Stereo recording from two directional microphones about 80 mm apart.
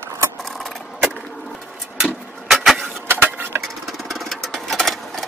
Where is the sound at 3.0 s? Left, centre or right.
Right.